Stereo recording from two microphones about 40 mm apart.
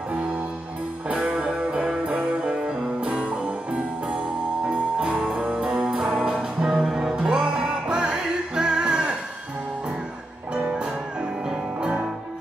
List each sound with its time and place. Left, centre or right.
1.4 s music: right
4.6 s music: right
5.5 s music: right
7.2 s music: right